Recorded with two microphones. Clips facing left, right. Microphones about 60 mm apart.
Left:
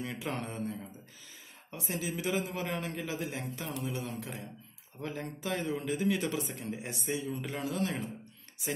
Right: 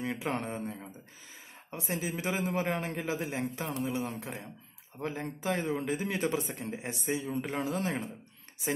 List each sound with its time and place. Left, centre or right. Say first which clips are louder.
0.0 s a man's voice: right 3 dB; right